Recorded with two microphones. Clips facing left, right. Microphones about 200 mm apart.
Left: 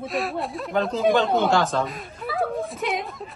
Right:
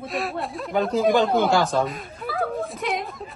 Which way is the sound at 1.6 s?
Centre (ahead or behind).